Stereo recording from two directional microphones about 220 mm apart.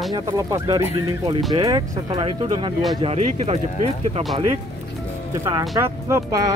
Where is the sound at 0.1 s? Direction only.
15° right (ahead or behind).